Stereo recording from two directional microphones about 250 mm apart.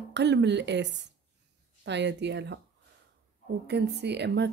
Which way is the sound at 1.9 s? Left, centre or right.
Right.